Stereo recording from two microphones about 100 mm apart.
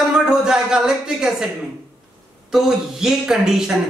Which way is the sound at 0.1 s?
5° right (ahead or behind).